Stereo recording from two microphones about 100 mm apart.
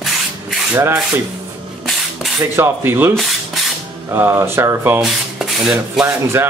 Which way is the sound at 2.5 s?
25° right (ahead or behind).